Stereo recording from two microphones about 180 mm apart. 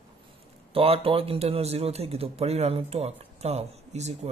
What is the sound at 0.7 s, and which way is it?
Speech, 30° right (ahead or behind).